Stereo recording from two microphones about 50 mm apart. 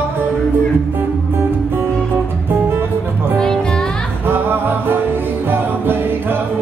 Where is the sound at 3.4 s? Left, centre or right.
Centre.